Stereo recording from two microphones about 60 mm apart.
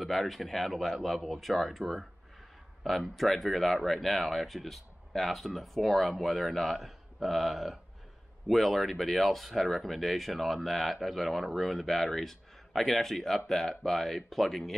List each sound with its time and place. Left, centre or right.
0.0 s speech: centre